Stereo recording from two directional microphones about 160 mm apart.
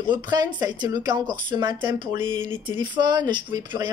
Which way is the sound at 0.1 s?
25° right (ahead or behind).